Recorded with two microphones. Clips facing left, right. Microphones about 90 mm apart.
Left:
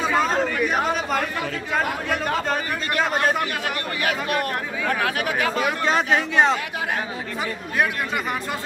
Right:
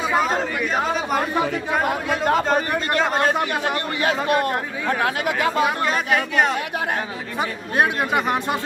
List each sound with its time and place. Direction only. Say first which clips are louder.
0.1 s chatter: right 3 dB; 15° right (ahead or behind)
1.1 s speech: right 4 dB; 20° right (ahead or behind)
5.9 s speech: left 1 dB; 25° left (ahead or behind)
7.7 s speech: right 4 dB; 20° right (ahead or behind)